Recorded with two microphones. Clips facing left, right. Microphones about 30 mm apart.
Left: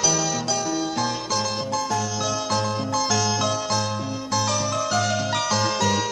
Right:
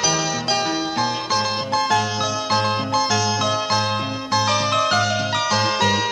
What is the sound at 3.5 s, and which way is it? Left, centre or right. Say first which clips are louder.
Music: right 4 dB; right.